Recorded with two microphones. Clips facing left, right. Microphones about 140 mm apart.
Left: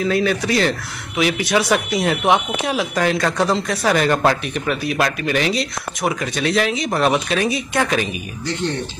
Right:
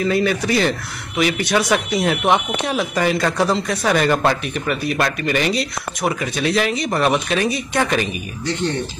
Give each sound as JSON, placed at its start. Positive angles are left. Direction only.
{"t": 0.0, "sound": "speech", "side_deg": 0}